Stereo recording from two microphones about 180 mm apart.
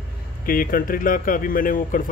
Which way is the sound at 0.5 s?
50° left (ahead or behind).